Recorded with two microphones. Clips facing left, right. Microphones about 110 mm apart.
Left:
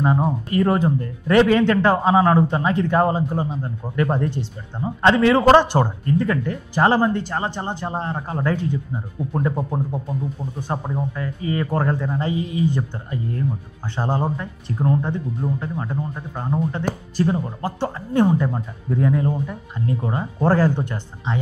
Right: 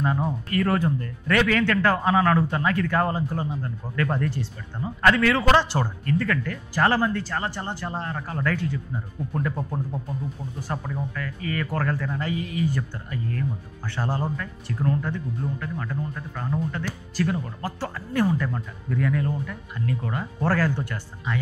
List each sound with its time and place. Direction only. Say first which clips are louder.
0.0 s speech: left 5 dB; 25° left (ahead or behind)